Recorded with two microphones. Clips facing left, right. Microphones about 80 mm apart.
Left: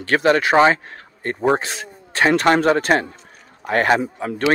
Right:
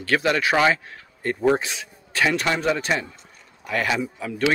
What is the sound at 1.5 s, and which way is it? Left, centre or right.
Speech, left.